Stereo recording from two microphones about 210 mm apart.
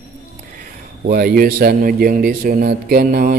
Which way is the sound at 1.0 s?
45° right (ahead or behind).